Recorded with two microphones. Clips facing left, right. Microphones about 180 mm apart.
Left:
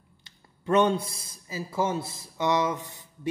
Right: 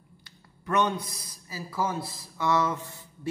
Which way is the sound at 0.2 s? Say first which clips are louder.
Left 3 dB; 25° left (ahead or behind).